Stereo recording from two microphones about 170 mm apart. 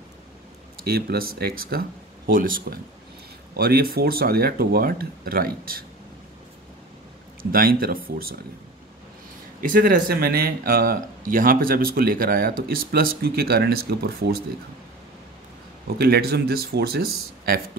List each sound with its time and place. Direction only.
0.8 s a man's voice: 65° right (ahead or behind)
7.5 s a man's voice: 60° right (ahead or behind)
9.6 s a man's voice: 55° right (ahead or behind)
16.0 s a man's voice: 70° right (ahead or behind)